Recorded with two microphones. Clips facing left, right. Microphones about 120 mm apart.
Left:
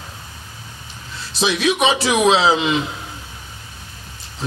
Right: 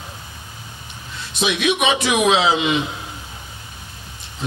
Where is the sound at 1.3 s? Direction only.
30° left (ahead or behind).